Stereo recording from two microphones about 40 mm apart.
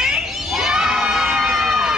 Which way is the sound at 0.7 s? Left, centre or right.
Centre.